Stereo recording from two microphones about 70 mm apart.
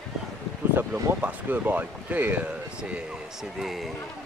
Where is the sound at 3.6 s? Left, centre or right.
Centre.